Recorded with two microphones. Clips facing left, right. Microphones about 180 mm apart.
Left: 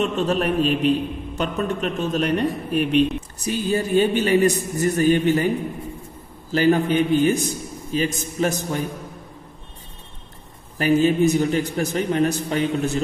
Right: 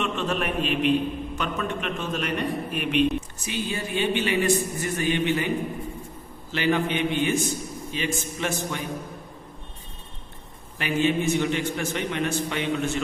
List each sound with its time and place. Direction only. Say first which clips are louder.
0.0 s a man's voice: left 6 dB; 35° left (ahead or behind)
6.5 s a man's voice: left 6 dB; 40° left (ahead or behind)
10.8 s a man's voice: left 7 dB; 40° left (ahead or behind)